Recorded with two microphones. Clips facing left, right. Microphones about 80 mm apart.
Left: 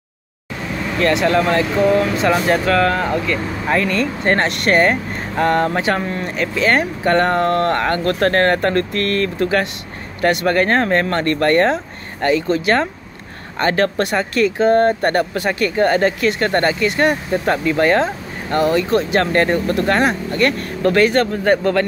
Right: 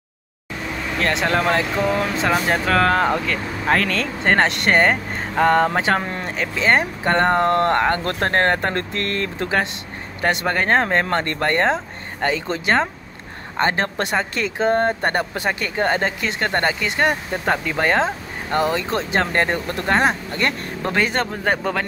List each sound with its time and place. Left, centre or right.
1.1 s speech: right
3.7 s speech: right
4.2 s speech: right